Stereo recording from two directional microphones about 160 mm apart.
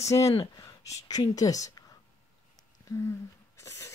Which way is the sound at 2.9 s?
20° left (ahead or behind).